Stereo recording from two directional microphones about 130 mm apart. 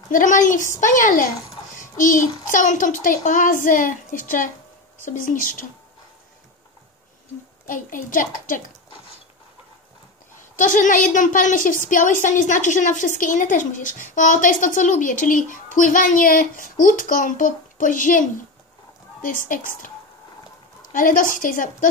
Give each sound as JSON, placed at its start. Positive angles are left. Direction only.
{"t": 0.1, "sound": "a woman's voice", "side_deg": 90}
{"t": 1.8, "sound": "child singing", "side_deg": 80}
{"t": 2.4, "sound": "a woman's voice", "side_deg": 80}
{"t": 7.6, "sound": "a woman's voice", "side_deg": 90}
{"t": 10.5, "sound": "a woman's voice", "side_deg": 90}
{"t": 19.2, "sound": "a woman's voice", "side_deg": 90}
{"t": 20.9, "sound": "a woman's voice", "side_deg": 90}